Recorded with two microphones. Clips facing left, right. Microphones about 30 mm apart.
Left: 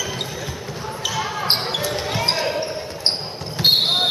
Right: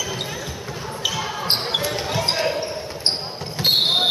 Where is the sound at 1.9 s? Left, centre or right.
Centre.